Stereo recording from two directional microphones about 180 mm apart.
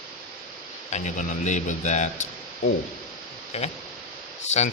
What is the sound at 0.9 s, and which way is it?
Speech, 40° left (ahead or behind).